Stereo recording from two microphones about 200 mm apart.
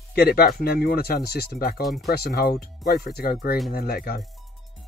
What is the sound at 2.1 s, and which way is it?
Speech, 50° left (ahead or behind).